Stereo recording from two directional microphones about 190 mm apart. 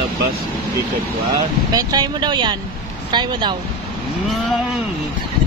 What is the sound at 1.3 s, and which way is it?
Speech, 20° right (ahead or behind).